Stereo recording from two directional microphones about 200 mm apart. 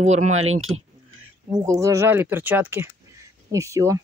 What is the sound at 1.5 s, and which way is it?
Speech, 15° right (ahead or behind).